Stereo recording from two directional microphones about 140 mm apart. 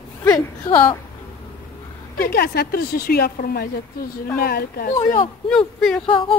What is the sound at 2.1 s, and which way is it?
Speech, 90° left.